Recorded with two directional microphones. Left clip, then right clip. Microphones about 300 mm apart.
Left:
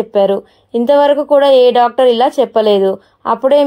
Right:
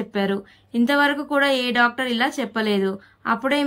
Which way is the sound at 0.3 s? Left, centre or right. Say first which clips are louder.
Left 12 dB; centre.